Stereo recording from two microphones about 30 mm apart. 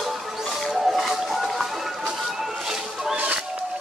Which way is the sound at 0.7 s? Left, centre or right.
Centre.